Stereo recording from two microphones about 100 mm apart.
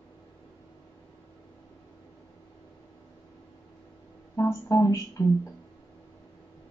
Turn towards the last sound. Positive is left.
turn(degrees=30)  # may be behind; listen again after turning